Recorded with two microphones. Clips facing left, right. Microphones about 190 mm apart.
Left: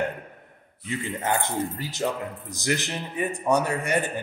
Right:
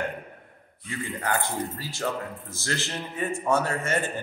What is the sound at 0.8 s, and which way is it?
A man's voice, 20° left (ahead or behind).